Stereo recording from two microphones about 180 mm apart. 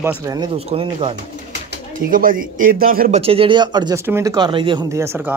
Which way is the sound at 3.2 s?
30° right (ahead or behind).